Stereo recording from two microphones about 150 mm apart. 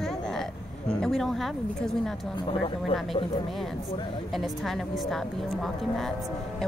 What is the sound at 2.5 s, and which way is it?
Speech, 40° left (ahead or behind).